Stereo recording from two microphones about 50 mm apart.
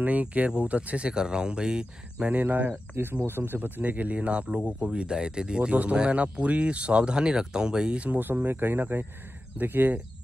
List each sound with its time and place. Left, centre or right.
0.0 s speech: right
2.3 s speech: right; by 8.1 s centre
8.1 s speech: right